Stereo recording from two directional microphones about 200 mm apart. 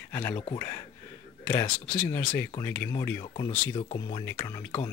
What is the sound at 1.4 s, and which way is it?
Speech, 10° left (ahead or behind).